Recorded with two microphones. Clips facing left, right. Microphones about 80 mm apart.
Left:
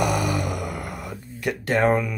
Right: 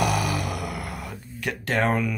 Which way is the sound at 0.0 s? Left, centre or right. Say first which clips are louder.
Left 1 dB; centre.